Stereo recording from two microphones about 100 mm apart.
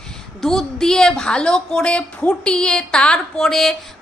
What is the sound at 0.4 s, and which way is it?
A woman's voice, 5° left (ahead or behind).